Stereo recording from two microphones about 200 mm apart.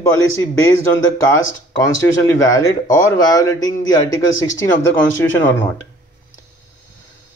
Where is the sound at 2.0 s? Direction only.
15° left (ahead or behind).